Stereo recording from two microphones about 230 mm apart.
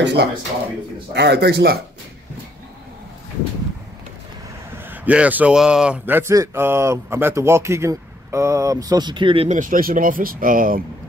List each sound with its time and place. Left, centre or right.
0.0 s speech: right
4.8 s a man's voice: centre; by 10.8 s right